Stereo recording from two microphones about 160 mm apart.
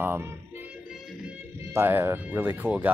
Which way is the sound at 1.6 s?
15° right (ahead or behind).